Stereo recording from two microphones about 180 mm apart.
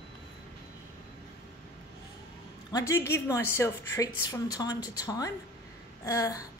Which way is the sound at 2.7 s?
15° left (ahead or behind).